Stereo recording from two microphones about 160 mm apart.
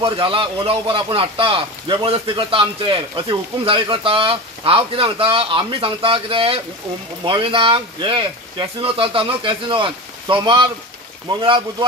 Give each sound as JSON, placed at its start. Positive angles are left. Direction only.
{"t": 0.0, "sound": "speech", "side_deg": -35}